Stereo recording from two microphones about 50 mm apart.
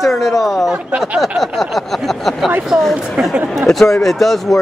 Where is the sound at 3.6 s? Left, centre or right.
Centre.